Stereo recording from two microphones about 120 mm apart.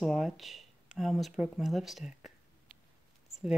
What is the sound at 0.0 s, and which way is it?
Speech, centre (ahead or behind).